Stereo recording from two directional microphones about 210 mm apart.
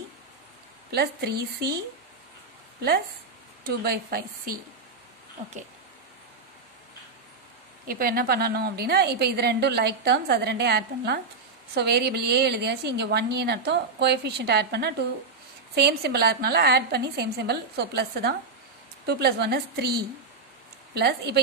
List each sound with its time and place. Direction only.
3.6 s a woman's voice: 45° right (ahead or behind)
7.9 s a woman's voice: 45° right (ahead or behind)